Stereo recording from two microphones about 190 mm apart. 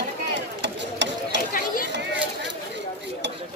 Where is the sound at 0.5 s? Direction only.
65° right (ahead or behind).